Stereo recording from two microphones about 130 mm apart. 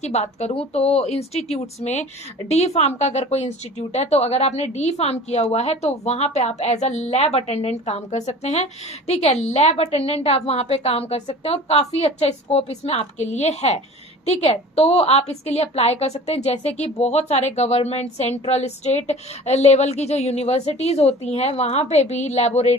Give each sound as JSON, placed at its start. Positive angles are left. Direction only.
{"t": 0.0, "sound": "a woman's voice", "side_deg": 55}